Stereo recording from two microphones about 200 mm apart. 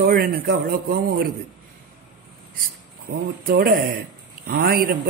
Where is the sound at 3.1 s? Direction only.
50° right (ahead or behind).